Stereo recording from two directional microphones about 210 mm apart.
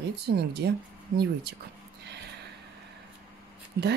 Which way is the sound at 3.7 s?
45° right (ahead or behind).